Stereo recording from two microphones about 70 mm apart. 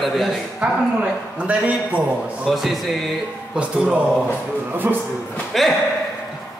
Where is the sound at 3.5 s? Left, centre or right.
Centre.